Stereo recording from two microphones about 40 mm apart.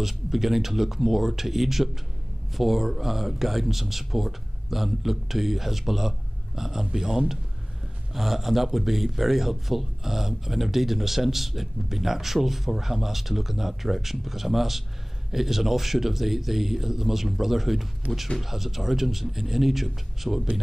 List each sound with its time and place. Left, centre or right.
0.0 s speech: centre
18.0 s speech: right
18.4 s speech: centre